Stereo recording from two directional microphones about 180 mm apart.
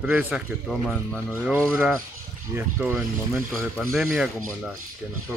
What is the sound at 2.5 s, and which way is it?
Speech, 10° right (ahead or behind).